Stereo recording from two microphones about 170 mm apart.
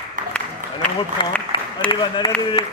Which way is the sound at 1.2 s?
30° left (ahead or behind).